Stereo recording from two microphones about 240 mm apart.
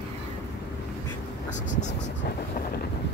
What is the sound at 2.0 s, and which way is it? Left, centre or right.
Vehicle, left.